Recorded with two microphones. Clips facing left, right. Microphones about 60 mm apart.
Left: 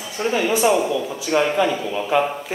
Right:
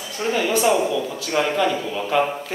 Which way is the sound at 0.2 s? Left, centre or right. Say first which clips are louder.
Left 1 dB; centre.